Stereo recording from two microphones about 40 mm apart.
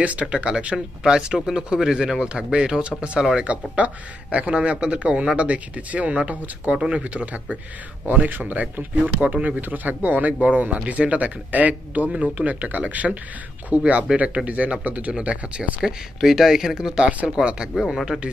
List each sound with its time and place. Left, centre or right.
0.0 s speech: right; by 3.4 s centre
3.4 s speech: right
8.1 s speech: right
9.6 s speech: right
15.8 s speech: centre
17.7 s speech: centre